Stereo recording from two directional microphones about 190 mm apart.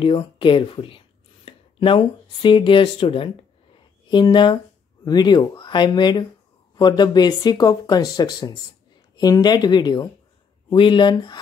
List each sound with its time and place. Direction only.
0.0 s speech: 25° left (ahead or behind)